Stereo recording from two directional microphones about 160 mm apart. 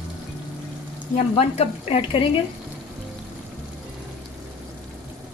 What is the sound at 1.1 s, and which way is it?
Speech, 35° left (ahead or behind).